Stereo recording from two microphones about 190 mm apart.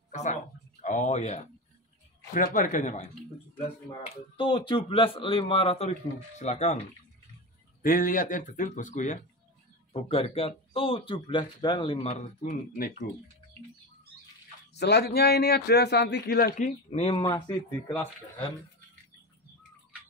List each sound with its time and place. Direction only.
0.1 s a sound: 40° left (ahead or behind)
2.3 s speech: 45° left (ahead or behind)
4.4 s a man's voice: 25° left (ahead or behind)
7.8 s speech: 45° left (ahead or behind)
14.7 s a man's voice: 60° left (ahead or behind)
16.6 s speech: 30° left (ahead or behind)
17.2 s a man's voice: 20° left (ahead or behind)